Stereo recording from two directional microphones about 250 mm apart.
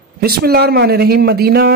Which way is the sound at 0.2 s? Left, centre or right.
Right.